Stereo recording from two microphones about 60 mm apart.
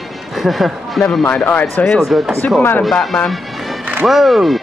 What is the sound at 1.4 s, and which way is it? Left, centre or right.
Speech, left.